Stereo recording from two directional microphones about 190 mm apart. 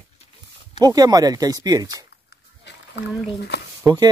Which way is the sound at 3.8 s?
20° right (ahead or behind).